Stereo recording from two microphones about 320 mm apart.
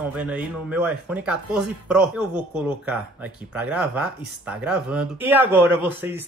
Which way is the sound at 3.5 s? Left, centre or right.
Centre.